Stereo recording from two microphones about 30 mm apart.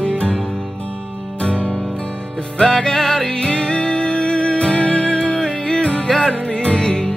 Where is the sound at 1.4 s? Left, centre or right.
Left.